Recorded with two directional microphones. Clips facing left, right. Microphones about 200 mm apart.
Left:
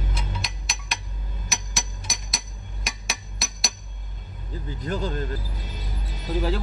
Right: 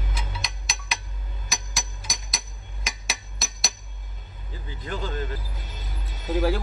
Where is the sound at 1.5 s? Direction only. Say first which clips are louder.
Left 1 dB; centre (ahead or behind).